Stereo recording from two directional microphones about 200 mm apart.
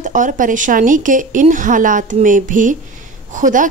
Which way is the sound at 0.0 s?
40° right (ahead or behind).